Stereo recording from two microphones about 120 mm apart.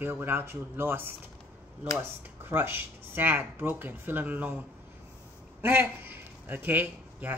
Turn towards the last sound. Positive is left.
turn(degrees=-15)  # may be behind; listen again after turning